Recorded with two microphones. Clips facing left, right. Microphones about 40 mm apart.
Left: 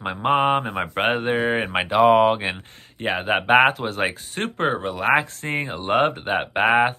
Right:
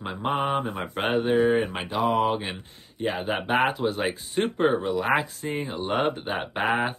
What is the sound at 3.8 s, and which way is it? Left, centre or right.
Speech, left.